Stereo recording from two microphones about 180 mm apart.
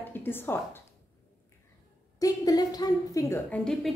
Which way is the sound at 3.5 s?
5° left (ahead or behind).